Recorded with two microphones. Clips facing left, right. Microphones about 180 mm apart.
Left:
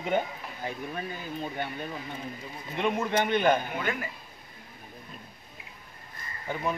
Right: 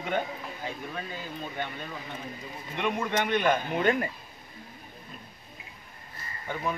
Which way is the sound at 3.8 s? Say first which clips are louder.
Right 7 dB; 35° right (ahead or behind).